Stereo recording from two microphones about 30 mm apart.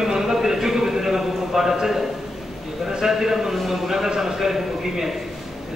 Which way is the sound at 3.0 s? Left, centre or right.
Centre.